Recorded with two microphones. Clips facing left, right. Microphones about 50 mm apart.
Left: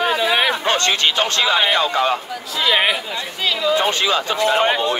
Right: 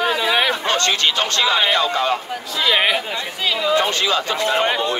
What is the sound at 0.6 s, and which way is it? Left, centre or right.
Speech, left.